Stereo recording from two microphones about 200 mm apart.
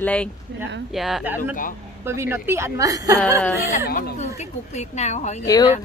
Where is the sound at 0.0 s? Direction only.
5° left (ahead or behind); by 3.2 s 15° right (ahead or behind).